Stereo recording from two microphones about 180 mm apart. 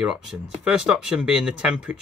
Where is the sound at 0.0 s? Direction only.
5° right (ahead or behind).